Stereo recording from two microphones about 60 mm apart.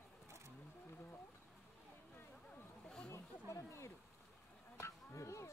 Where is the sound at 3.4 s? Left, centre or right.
Left.